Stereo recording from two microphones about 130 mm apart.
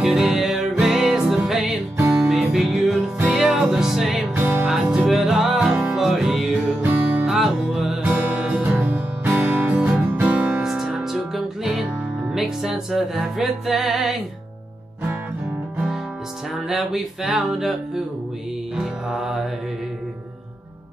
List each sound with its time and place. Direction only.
0.0 s music: 5° right (ahead or behind)
4.4 s music: 20° right (ahead or behind)
4.6 s music: 5° right (ahead or behind)
16.6 s music: centre (ahead or behind)
18.8 s mantra: 5° right (ahead or behind)